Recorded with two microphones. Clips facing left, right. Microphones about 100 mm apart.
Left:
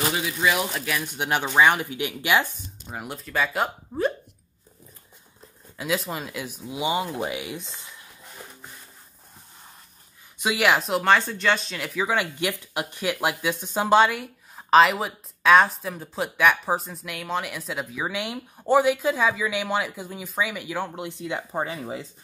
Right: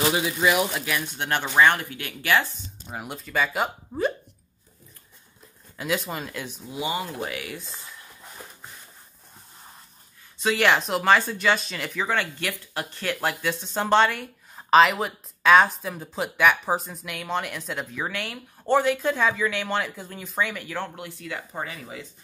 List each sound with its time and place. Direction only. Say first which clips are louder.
0.1 s speech: right 2 dB; 20° right (ahead or behind)
1.0 s speech: left 2 dB; 10° left (ahead or behind)
2.9 s speech: even; centre (ahead or behind)
5.8 s speech: even; centre (ahead or behind)
6.7 s speech: left 3 dB; 20° left (ahead or behind)
10.4 s speech: even; 5° left (ahead or behind); by 22.0 s 30° left (ahead or behind)